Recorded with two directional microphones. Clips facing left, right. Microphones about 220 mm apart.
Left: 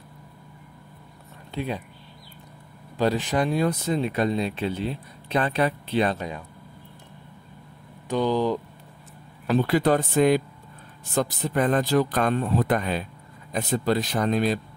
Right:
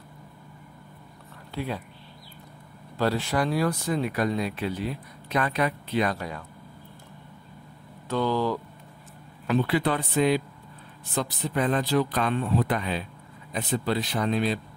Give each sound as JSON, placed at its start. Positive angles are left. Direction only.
{"t": 1.5, "sound": "speech", "side_deg": 20}
{"t": 3.0, "sound": "speech", "side_deg": 15}
{"t": 8.1, "sound": "speech", "side_deg": 15}
{"t": 9.5, "sound": "speech", "side_deg": 40}